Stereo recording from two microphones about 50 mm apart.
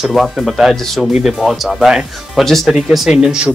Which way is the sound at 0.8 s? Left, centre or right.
Centre.